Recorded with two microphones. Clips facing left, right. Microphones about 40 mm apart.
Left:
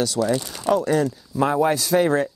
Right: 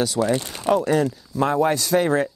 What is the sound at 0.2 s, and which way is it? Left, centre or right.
Speech, right.